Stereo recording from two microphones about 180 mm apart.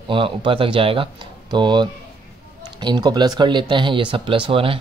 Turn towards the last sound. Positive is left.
turn(degrees=-30)  # may be behind; listen again after turning